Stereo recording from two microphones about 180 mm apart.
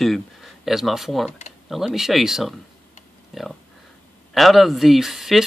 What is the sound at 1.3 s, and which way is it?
Speech, 40° left (ahead or behind).